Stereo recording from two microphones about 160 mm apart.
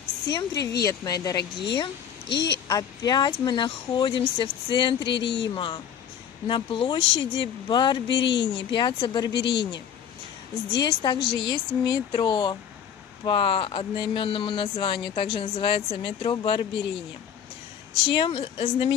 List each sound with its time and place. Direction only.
0.3 s speech: 25° left (ahead or behind)
5.1 s speech: 90° left
5.5 s speech: 30° left (ahead or behind)
8.2 s speech: 90° left
8.6 s speech: 30° left (ahead or behind)
9.3 s speech: 90° left
10.8 s speech: 30° left (ahead or behind)
18.0 s speech: 35° left (ahead or behind)